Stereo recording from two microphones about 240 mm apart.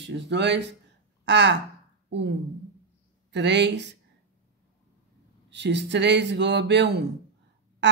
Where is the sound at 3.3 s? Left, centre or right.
Right.